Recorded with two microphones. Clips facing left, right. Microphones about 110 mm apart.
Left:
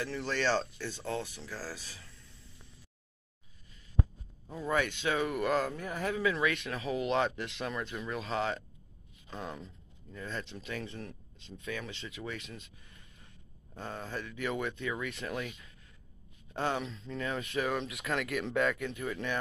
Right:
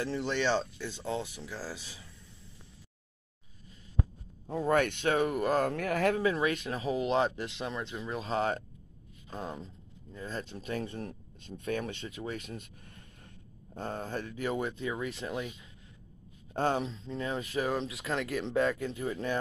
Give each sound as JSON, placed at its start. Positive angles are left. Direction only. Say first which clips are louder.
{"t": 0.0, "sound": "speech", "louder": "right 2 dB", "side_deg": -20}
{"t": 4.5, "sound": "speech", "louder": "right 5 dB", "side_deg": -55}
{"t": 5.3, "sound": "speech", "louder": "right 1 dB", "side_deg": -35}
{"t": 5.6, "sound": "speech", "louder": "right 6 dB", "side_deg": -70}
{"t": 6.1, "sound": "speech", "louder": "right 2 dB", "side_deg": -40}
{"t": 14.4, "sound": "speech", "louder": "right 1 dB", "side_deg": -30}
{"t": 16.5, "sound": "speech", "louder": "right 4 dB", "side_deg": -40}